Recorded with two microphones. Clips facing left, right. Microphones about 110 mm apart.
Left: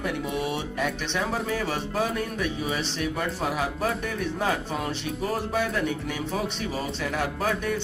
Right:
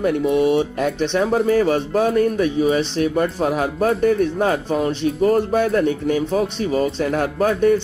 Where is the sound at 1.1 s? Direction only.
45° right (ahead or behind).